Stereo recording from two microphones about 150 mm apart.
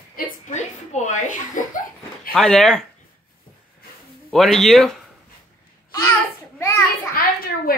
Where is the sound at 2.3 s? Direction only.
5° left (ahead or behind).